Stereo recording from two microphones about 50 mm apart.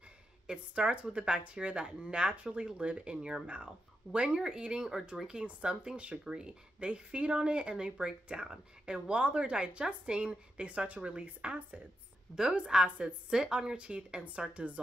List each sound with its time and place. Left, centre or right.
0.5 s speech: right